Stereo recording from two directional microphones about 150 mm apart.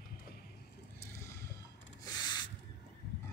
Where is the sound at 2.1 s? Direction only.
25° left (ahead or behind).